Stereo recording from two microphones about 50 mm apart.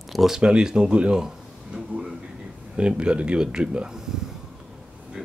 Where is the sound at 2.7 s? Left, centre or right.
Right.